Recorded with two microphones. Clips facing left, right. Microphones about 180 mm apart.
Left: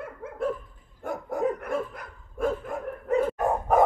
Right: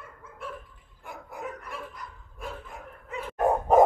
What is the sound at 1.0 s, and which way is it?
Dog, 45° left (ahead or behind).